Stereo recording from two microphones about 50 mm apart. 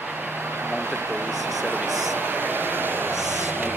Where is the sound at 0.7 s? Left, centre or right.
Right.